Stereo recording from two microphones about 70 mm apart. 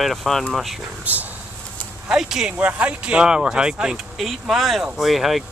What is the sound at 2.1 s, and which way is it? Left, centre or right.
Speech, centre.